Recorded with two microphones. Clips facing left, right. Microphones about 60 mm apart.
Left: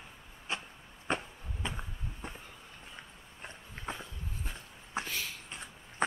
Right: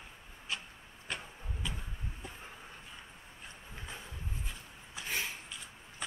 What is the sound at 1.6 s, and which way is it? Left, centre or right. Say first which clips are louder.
Vehicle: left 3 dB; left.